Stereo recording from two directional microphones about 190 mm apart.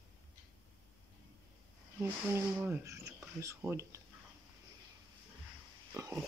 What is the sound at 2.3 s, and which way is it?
Speech, 15° right (ahead or behind).